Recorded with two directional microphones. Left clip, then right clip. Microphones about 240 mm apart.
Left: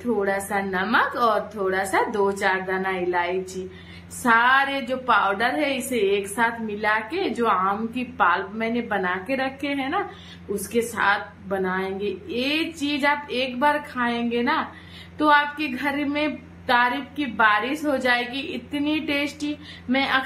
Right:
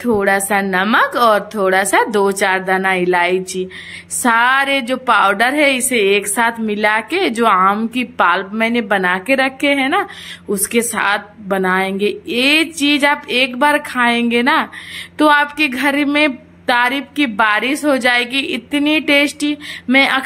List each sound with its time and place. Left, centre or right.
0.0 s a woman's voice: right